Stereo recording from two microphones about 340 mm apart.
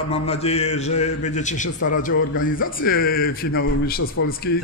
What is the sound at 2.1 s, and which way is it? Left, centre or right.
Speech, left.